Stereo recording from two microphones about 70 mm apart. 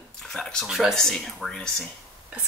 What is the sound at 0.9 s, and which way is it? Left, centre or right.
Speech, centre.